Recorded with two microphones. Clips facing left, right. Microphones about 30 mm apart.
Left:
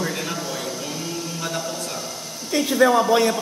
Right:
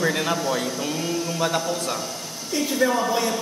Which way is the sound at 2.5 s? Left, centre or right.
Left.